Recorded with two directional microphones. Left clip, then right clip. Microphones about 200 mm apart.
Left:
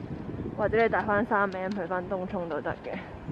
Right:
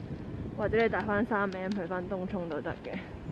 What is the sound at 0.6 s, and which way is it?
Speech, 15° left (ahead or behind).